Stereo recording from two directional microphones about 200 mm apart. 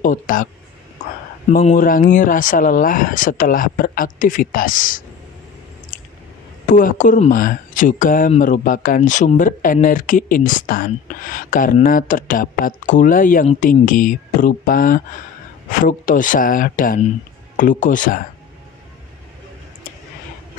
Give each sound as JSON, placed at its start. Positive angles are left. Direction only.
{"t": 0.0, "sound": "speech", "side_deg": 40}
{"t": 1.8, "sound": "speech", "side_deg": 45}
{"t": 6.7, "sound": "speech", "side_deg": 40}